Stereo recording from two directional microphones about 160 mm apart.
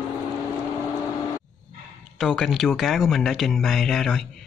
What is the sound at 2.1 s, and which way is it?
Speech, centre (ahead or behind).